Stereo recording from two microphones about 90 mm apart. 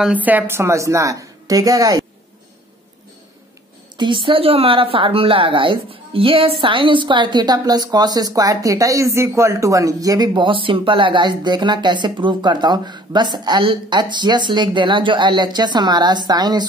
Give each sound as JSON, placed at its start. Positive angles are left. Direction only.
{"t": 0.0, "sound": "a woman's voice", "side_deg": -15}
{"t": 3.9, "sound": "a woman's voice", "side_deg": -60}